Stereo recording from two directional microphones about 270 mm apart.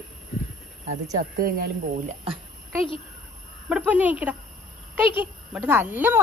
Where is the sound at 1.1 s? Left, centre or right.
Right.